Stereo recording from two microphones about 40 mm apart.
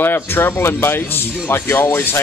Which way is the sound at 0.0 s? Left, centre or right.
Left.